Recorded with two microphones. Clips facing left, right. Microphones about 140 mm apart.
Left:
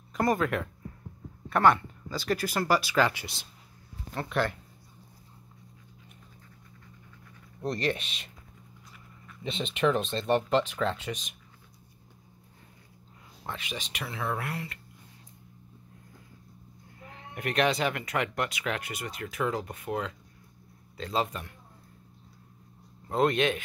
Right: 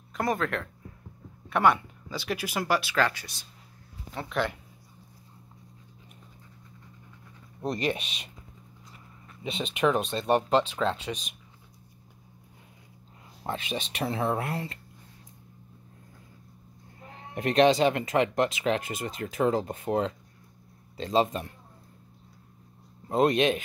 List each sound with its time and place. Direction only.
0.1 s speech: centre (ahead or behind)
1.5 s speech: 5° right (ahead or behind)
7.6 s speech: 15° right (ahead or behind)
9.4 s speech: 15° right (ahead or behind)
13.4 s speech: 35° right (ahead or behind)
17.0 s speech: 30° right (ahead or behind)
23.0 s speech: 20° right (ahead or behind)